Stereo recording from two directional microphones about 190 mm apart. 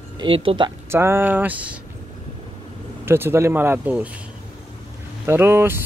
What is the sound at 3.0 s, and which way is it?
Speech, 10° right (ahead or behind).